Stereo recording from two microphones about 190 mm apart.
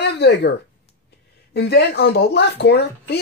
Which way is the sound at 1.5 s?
60° left (ahead or behind).